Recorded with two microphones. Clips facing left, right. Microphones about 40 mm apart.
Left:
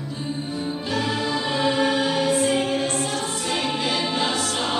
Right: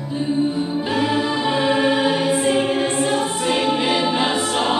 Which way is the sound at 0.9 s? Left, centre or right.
Right.